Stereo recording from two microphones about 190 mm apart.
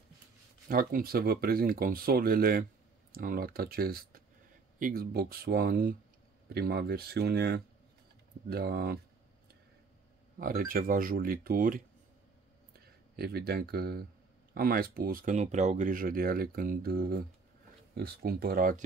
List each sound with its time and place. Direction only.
0.7 s speech: 50° right (ahead or behind)
10.4 s speech: 50° right (ahead or behind)
13.1 s speech: 55° right (ahead or behind)